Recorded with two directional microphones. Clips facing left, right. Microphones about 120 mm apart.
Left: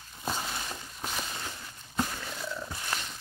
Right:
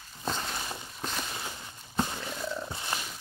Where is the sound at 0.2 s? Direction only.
5° left (ahead or behind).